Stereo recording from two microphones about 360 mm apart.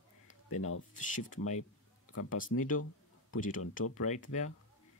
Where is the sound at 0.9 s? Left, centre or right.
Left.